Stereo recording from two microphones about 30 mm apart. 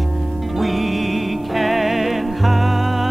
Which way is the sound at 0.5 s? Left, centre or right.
Centre.